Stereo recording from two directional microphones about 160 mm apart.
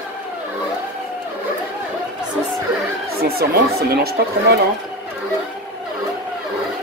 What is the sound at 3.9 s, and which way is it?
Speech, 75° right (ahead or behind).